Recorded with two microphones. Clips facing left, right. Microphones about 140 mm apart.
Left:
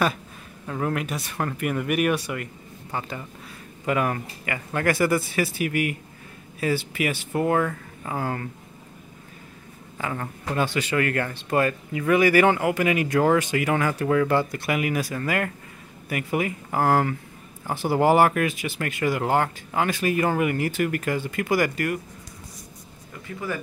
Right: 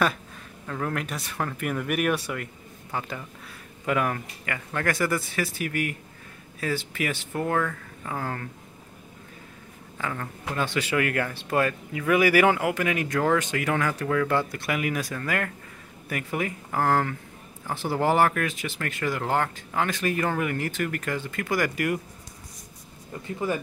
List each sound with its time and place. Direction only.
0.7 s speech: 15° left (ahead or behind)
9.9 s a man's voice: 15° left (ahead or behind)
10.6 s speech: centre (ahead or behind)
23.2 s speech: 25° right (ahead or behind)